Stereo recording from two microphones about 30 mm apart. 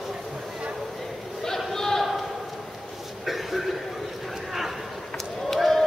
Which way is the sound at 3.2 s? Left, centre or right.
Centre.